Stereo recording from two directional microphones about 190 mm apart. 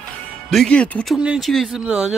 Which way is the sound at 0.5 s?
5° left (ahead or behind).